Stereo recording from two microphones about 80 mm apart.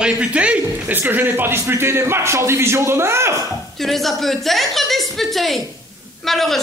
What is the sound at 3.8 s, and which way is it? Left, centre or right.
A woman's voice, centre.